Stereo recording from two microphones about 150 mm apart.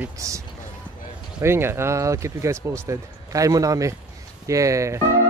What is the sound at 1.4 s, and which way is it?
Speech, 15° right (ahead or behind).